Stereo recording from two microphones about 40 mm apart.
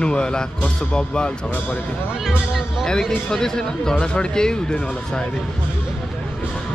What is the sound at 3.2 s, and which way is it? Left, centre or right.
Speech, centre.